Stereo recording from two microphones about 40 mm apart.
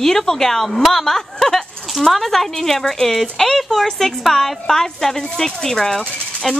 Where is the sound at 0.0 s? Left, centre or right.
Centre.